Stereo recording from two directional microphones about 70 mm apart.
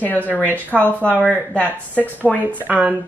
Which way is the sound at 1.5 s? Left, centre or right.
Centre.